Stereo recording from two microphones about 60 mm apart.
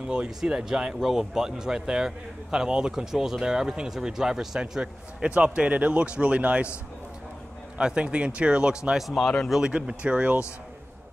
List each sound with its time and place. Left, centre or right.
0.0 s speech: centre
7.7 s speech: centre
9.0 s speech: centre
9.5 s speech: centre